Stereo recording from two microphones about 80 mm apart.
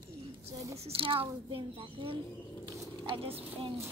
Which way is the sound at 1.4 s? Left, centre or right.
Right.